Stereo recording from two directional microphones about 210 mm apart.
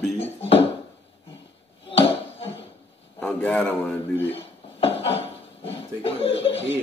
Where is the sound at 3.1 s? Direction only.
5° left (ahead or behind).